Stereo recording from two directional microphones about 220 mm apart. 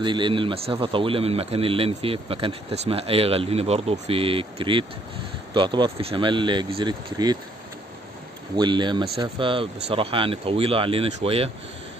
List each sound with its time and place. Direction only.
0.0 s a man's voice: 20° right (ahead or behind)
8.5 s a man's voice: 20° right (ahead or behind)